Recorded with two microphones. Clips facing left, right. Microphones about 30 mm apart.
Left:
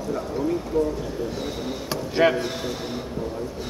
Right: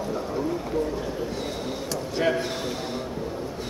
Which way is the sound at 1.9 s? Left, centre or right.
Left.